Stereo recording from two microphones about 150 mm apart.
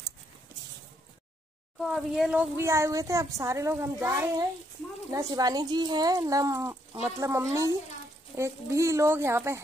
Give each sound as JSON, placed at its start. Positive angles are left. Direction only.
{"t": 1.8, "sound": "speech", "side_deg": 0}
{"t": 2.5, "sound": "a child's voice", "side_deg": -20}